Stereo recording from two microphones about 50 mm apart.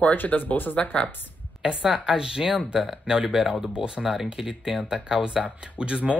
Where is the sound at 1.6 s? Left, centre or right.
Centre.